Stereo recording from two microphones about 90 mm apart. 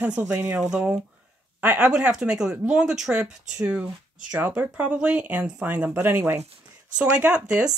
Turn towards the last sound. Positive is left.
turn(degrees=-10)  # may be behind; listen again after turning